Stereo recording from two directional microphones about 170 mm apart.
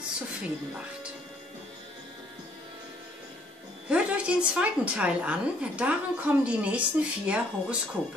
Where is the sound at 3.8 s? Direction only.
5° right (ahead or behind).